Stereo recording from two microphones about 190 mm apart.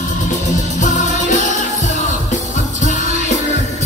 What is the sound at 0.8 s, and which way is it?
Music, 40° left (ahead or behind).